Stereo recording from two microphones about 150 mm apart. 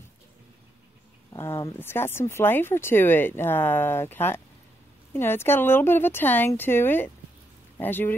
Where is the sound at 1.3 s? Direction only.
15° left (ahead or behind).